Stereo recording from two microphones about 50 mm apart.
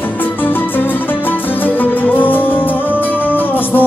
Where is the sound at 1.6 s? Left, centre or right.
Left.